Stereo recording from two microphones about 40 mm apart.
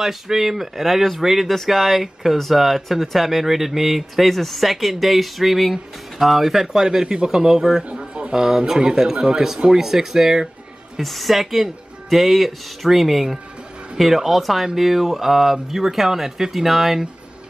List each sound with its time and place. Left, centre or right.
0.0 s speech: centre
7.9 s a sound: right
8.4 s speech: centre
11.0 s speech: centre